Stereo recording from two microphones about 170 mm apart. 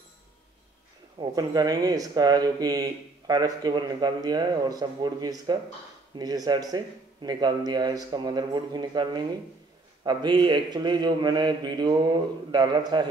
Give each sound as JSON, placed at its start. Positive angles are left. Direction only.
{"t": 1.2, "sound": "speech", "side_deg": -25}